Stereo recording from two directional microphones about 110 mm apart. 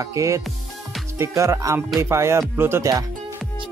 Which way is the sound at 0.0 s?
30° right (ahead or behind).